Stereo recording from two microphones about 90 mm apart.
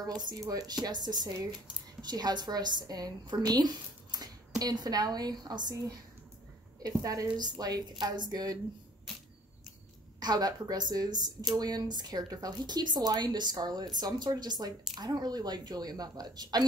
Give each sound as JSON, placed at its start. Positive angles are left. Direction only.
{"t": 0.0, "sound": "a woman's voice", "side_deg": -50}
{"t": 10.2, "sound": "a woman's voice", "side_deg": -45}